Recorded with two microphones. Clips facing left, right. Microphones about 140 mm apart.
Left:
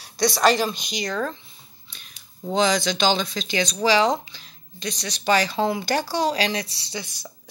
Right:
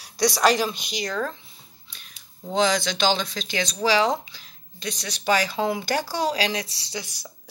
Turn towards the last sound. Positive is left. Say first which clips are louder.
# left 1 dB
turn(degrees=-5)  # may be behind; listen again after turning